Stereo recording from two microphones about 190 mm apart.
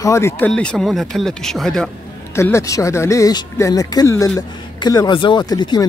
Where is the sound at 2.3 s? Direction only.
15° left (ahead or behind).